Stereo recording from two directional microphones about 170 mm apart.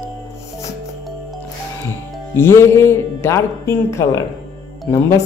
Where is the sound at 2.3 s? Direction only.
15° left (ahead or behind).